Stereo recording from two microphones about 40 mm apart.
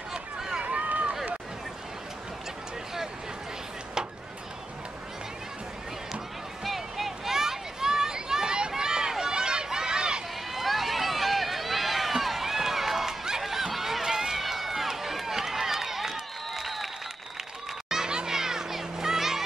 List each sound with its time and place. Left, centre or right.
0.1 s run: centre
0.6 s run: right
0.8 s run: right
6.6 s a sound: centre
10.5 s run: centre
13.4 s a sound: centre
14.0 s run: centre
14.4 s run: centre
17.8 s music: centre